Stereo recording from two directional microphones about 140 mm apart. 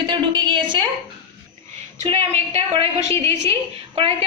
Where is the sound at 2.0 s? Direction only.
45° right (ahead or behind).